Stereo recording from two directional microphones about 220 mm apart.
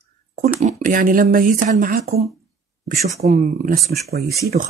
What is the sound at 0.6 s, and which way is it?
Speech, 35° right (ahead or behind).